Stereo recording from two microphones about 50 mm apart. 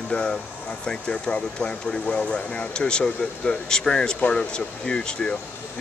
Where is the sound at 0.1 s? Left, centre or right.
Centre.